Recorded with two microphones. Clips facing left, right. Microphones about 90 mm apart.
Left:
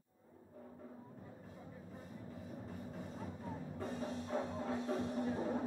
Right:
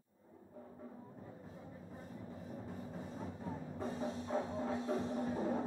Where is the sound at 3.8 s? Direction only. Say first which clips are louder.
Right 2 dB; 25° right (ahead or behind).